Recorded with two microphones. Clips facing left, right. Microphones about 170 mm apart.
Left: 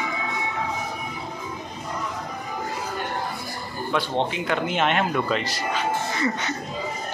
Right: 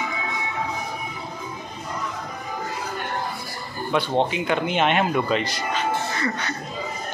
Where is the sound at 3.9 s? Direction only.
5° right (ahead or behind).